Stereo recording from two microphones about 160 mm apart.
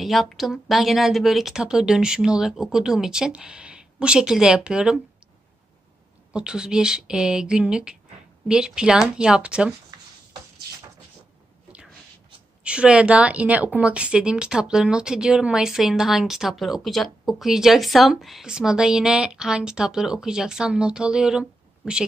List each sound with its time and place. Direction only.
0.0 s a woman's voice: centre (ahead or behind)
6.3 s a woman's voice: 5° right (ahead or behind)
12.6 s a woman's voice: 5° right (ahead or behind)